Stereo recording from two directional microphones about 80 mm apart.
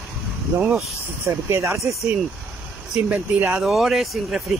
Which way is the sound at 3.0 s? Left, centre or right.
Centre.